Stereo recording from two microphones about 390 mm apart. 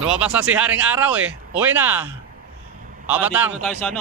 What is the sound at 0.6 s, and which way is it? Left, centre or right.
A man's voice, centre.